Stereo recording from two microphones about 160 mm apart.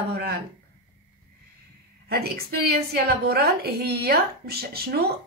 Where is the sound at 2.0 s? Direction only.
80° right.